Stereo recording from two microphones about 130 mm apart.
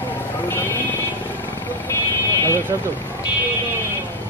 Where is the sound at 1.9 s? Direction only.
20° left (ahead or behind).